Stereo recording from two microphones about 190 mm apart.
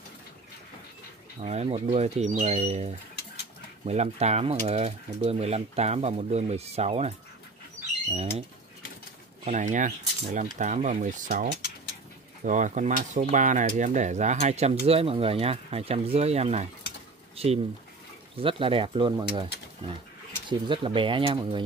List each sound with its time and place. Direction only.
1.4 s speech: 35° right (ahead or behind)
12.4 s speech: 40° right (ahead or behind); by 19.4 s 25° right (ahead or behind)
20.4 s speech: 25° right (ahead or behind)